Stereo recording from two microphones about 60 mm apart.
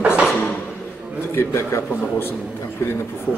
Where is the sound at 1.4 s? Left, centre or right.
Left.